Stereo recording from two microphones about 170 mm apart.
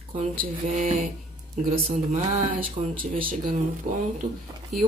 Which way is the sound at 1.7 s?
40° right (ahead or behind).